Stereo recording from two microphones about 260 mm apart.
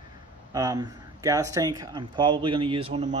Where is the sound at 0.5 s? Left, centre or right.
Centre.